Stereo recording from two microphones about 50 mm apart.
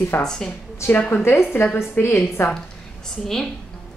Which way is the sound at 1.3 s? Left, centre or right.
Left.